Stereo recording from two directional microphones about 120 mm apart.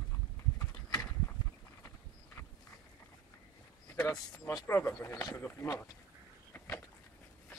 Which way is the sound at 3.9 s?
20° left (ahead or behind).